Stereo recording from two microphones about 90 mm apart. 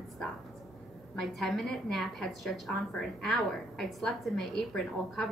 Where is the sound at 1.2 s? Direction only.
Centre (ahead or behind).